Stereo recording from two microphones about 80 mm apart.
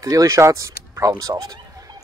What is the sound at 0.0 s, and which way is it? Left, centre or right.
Speech, right.